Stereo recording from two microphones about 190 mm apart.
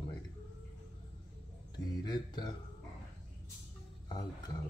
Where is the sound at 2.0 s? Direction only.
20° left (ahead or behind).